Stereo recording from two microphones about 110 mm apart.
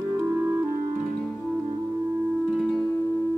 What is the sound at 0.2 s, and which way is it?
Music, 20° right (ahead or behind).